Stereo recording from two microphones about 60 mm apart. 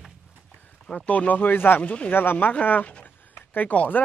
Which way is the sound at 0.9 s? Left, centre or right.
Left.